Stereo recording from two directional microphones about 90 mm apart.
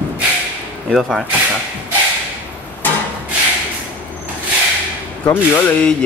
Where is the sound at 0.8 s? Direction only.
5° right (ahead or behind).